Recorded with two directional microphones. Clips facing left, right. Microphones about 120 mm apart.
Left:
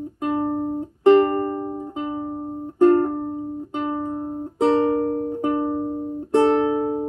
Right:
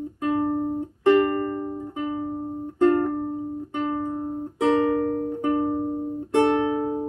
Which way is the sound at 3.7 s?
15° left (ahead or behind).